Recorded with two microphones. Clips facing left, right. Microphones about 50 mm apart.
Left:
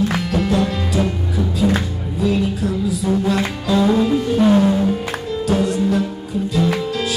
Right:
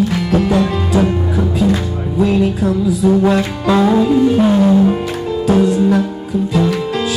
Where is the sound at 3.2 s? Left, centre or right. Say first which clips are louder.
Right 5 dB; right.